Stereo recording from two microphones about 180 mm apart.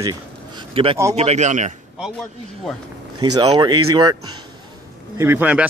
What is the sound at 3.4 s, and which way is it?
A man's voice, 25° right (ahead or behind).